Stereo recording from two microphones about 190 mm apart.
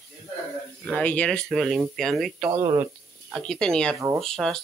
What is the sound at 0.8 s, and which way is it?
Speech, 5° left (ahead or behind).